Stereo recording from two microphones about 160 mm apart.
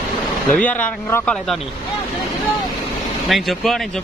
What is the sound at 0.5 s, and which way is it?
Speech, 10° left (ahead or behind).